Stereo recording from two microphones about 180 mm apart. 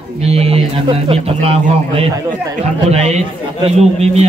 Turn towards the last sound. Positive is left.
turn(degrees=-35)  # may be behind; listen again after turning